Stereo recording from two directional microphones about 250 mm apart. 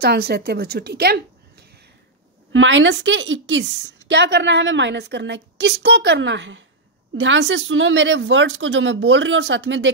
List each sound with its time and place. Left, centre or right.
0.0 s a woman's voice: right
2.5 s speech: right